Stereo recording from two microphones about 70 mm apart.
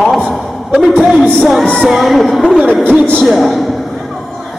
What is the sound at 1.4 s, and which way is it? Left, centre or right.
Speech, centre.